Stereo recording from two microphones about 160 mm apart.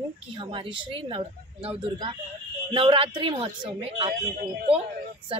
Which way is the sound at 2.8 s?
35° right (ahead or behind).